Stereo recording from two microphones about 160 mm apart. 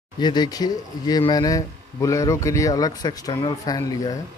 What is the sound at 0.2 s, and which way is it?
Speech, 25° left (ahead or behind).